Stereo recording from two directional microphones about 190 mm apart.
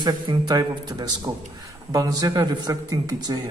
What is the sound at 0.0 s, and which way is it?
A man's voice, 20° right (ahead or behind).